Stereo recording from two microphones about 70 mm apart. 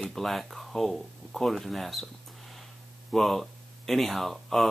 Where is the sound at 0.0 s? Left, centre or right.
Centre.